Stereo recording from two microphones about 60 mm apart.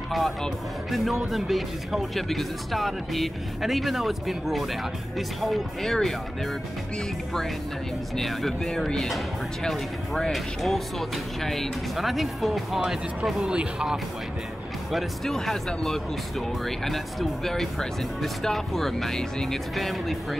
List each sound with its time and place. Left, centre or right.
0.1 s speech: centre
8.2 s speech: centre
12.8 s speech: centre
14.9 s speech: centre